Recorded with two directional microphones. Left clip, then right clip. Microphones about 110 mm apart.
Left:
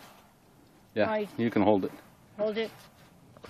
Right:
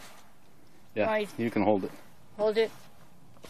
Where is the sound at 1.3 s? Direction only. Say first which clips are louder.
Left 2 dB; 25° left (ahead or behind).